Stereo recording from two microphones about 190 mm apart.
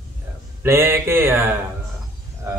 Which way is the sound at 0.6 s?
15° right (ahead or behind).